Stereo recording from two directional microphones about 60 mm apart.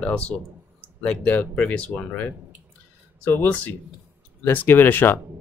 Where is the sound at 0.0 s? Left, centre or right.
Centre.